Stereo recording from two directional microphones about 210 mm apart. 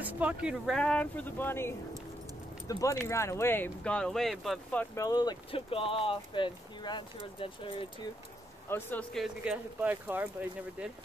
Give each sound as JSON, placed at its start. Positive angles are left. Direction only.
{"t": 0.0, "sound": "speech", "side_deg": -5}
{"t": 8.6, "sound": "speech", "side_deg": 10}